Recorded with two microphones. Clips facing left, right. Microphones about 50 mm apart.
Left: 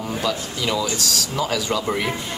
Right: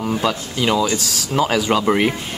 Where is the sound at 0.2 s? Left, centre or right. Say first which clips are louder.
Right 4 dB; right.